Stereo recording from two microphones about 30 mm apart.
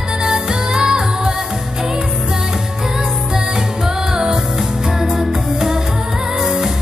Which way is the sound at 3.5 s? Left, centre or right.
Centre.